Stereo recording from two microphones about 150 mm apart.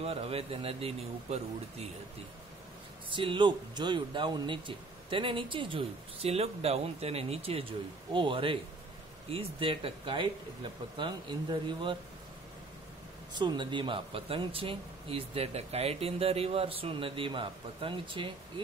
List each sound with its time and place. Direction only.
0.0 s speech: 40° right (ahead or behind)
3.1 s speech: 35° right (ahead or behind)
13.3 s speech: 30° right (ahead or behind)